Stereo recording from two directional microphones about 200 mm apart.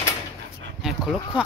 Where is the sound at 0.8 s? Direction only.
Centre (ahead or behind).